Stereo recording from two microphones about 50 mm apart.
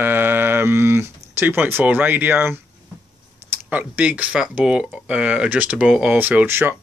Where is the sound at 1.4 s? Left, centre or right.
Right.